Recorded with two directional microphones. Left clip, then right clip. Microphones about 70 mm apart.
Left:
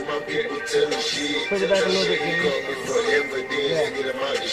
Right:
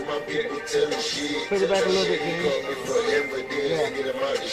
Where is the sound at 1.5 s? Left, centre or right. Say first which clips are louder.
Even; left.